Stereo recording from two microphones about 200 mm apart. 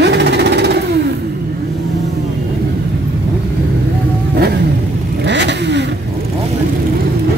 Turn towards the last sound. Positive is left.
turn(degrees=-60)  # may be behind; listen again after turning